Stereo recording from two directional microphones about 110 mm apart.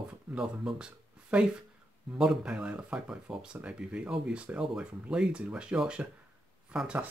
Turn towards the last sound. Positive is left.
turn(degrees=-10)  # may be behind; listen again after turning